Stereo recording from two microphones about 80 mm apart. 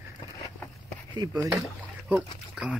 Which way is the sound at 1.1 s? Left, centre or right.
Right.